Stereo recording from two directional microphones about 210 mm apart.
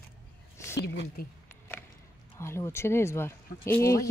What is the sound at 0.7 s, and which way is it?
Speech, 50° left (ahead or behind).